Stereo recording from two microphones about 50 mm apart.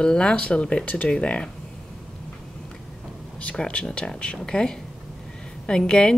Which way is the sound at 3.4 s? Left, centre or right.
Left.